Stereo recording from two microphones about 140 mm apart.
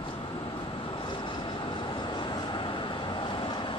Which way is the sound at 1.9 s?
35° left (ahead or behind).